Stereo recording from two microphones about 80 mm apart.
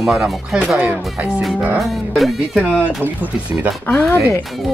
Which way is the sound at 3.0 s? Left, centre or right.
Right.